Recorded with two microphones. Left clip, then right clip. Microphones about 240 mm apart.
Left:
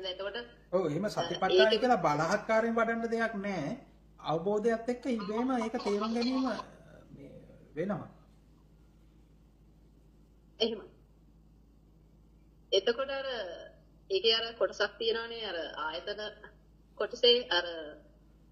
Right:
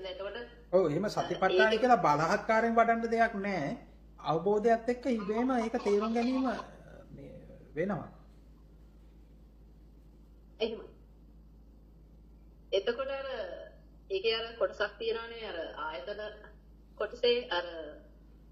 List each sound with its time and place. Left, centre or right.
0.0 s a man's voice: left
0.7 s speech: centre
5.8 s a woman's voice: left
6.7 s a sound: centre
10.6 s a woman's voice: left
12.6 s a woman's voice: left